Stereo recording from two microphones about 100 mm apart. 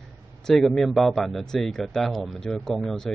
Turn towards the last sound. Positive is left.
turn(degrees=5)  # may be behind; listen again after turning